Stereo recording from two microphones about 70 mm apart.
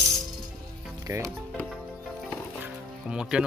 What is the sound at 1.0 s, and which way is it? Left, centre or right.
Speech, right.